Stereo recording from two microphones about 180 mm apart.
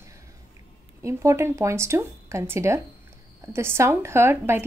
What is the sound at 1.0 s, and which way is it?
A woman's voice, 15° right (ahead or behind).